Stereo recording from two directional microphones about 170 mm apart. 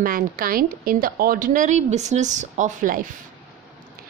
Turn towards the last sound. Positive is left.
turn(degrees=-50)  # may be behind; listen again after turning